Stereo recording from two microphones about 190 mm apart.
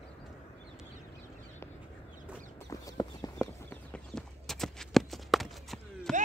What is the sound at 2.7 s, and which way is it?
Clip-clop, 20° left (ahead or behind).